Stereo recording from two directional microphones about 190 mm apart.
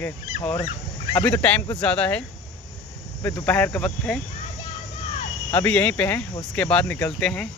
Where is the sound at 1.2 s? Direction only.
10° left (ahead or behind).